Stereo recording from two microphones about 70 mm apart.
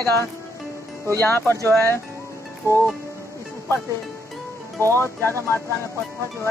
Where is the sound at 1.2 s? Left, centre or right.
Left.